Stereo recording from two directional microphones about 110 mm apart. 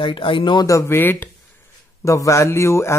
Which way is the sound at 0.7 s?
25° left (ahead or behind).